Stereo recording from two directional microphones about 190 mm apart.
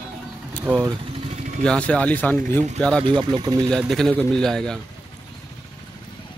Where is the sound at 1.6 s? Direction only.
5° left (ahead or behind).